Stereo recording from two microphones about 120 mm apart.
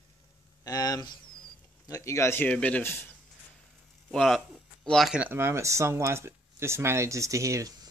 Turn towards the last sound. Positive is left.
turn(degrees=-25)  # may be behind; listen again after turning